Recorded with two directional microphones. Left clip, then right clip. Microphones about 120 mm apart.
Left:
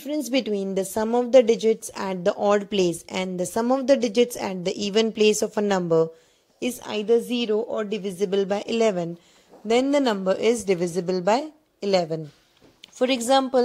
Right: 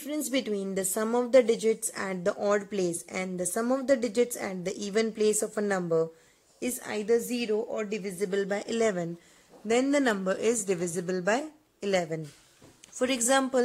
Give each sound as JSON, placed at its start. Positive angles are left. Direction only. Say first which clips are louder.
{"t": 0.0, "sound": "a woman's voice", "louder": "left 6 dB", "side_deg": 25}